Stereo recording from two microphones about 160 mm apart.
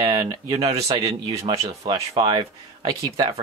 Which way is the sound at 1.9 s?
35° right (ahead or behind).